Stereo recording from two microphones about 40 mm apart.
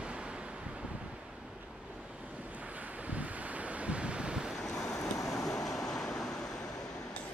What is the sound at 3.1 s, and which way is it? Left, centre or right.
Waves, right.